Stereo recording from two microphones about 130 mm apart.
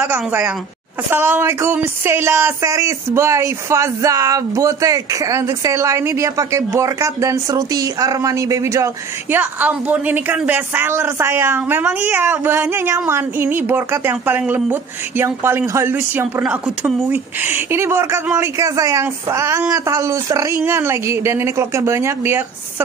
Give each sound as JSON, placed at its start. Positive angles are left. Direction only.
{"t": 0.0, "sound": "a woman's voice", "side_deg": -15}